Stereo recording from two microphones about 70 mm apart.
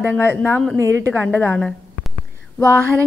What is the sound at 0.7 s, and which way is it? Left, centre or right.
Speech, right.